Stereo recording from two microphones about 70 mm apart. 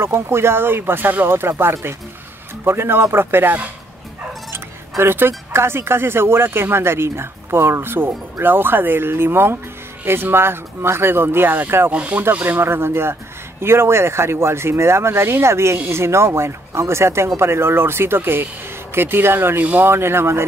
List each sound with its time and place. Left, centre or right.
0.0 s speech: right
11.9 s speech: centre
12.4 s speech: right